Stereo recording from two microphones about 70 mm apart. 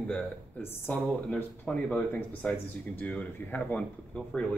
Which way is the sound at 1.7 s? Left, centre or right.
Centre.